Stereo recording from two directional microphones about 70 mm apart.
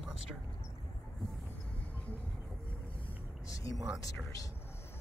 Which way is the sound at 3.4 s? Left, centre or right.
Left.